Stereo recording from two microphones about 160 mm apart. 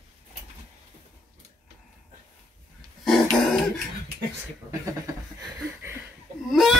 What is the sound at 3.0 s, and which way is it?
Throat clearing, centre (ahead or behind).